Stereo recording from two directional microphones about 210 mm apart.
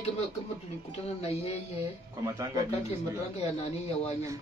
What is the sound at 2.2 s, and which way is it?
Speech, 15° right (ahead or behind).